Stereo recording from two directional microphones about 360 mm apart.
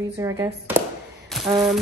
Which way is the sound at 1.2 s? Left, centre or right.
Centre.